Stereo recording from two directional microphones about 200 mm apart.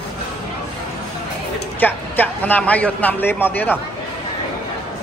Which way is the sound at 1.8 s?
10° left (ahead or behind).